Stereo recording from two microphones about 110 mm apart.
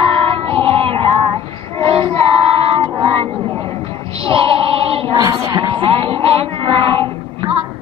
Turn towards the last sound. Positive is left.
turn(degrees=-55)  # may be behind; listen again after turning